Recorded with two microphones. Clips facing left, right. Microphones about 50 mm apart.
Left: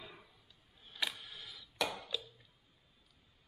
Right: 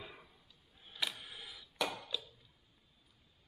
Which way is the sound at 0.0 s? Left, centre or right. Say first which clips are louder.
Right 1 dB; centre.